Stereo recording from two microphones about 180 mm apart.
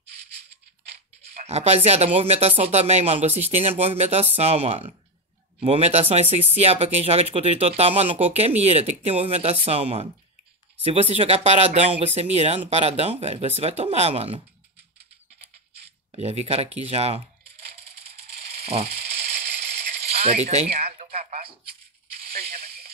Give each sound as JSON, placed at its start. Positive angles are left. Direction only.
{"t": 1.2, "sound": "speech", "side_deg": -35}
{"t": 16.1, "sound": "speech", "side_deg": -35}
{"t": 18.5, "sound": "a sound", "side_deg": -35}
{"t": 20.0, "sound": "coin", "side_deg": -35}